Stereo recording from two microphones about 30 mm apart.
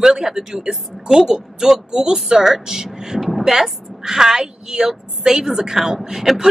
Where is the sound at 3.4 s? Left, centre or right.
Centre.